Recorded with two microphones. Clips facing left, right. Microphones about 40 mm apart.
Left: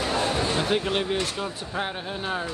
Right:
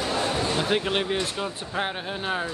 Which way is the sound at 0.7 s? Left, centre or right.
Centre.